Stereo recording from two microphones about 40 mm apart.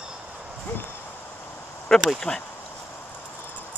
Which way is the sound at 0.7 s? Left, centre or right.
Left.